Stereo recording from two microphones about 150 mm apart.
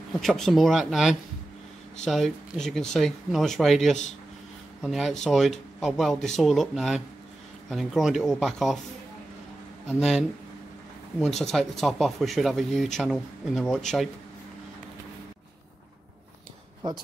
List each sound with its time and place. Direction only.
0.2 s speech: centre (ahead or behind)
9.8 s speech: centre (ahead or behind)